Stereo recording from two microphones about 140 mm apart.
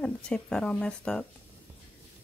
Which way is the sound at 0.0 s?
5° left (ahead or behind).